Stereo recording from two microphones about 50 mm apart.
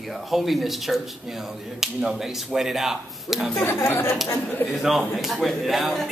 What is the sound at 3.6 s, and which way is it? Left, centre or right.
Speech, left.